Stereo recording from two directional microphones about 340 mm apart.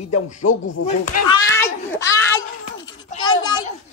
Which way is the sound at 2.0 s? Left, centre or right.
Centre.